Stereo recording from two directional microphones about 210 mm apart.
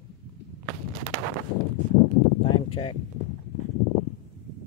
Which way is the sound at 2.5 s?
25° left (ahead or behind).